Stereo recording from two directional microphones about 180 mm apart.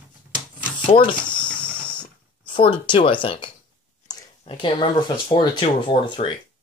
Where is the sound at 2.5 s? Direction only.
25° left (ahead or behind).